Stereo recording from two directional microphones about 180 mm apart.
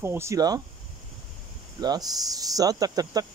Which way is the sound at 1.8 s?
20° right (ahead or behind).